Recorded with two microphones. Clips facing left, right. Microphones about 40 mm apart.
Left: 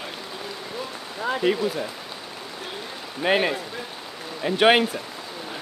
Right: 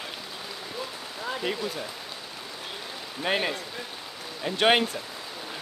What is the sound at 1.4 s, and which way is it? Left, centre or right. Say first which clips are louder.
Speech: left 9 dB; centre.